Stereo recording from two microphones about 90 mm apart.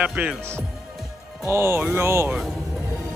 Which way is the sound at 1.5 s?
30° right (ahead or behind).